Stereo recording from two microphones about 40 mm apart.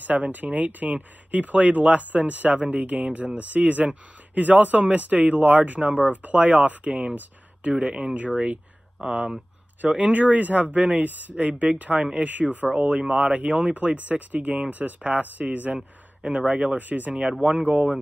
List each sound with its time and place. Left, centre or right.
0.0 s speech: right
7.7 s speech: right
8.1 s speech: right
9.0 s speech: right
9.8 s speech: right
12.7 s speech: right
13.2 s speech: right
16.2 s speech: right
16.7 s speech: right
17.2 s speech: right